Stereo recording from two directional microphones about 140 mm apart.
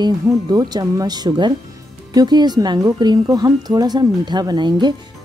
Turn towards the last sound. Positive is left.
turn(degrees=-30)  # may be behind; listen again after turning